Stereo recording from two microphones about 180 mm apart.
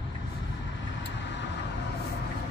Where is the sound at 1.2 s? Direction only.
80° left.